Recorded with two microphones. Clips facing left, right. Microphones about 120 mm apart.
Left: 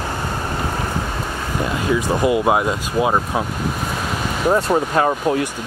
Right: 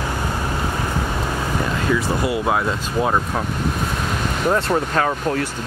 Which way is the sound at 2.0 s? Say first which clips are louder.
Left 4 dB; 20° left (ahead or behind).